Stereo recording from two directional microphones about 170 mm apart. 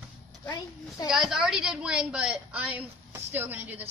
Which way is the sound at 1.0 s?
5° right (ahead or behind).